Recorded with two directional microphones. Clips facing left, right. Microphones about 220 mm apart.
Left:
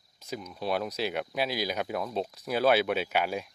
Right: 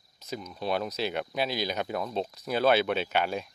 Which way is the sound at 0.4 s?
5° left (ahead or behind).